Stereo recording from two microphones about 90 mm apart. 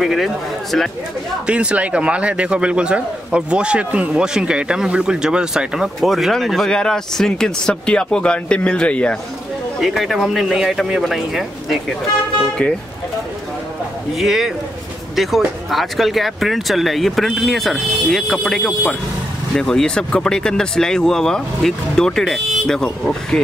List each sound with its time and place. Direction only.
0.0 s speech: centre (ahead or behind)
1.5 s a man's voice: 15° right (ahead or behind); by 9.1 s 10° left (ahead or behind)
9.8 s speech: centre (ahead or behind)
14.1 s speech: 5° right (ahead or behind)